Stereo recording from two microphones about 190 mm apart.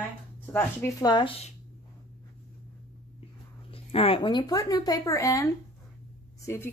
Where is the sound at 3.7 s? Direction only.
30° left (ahead or behind).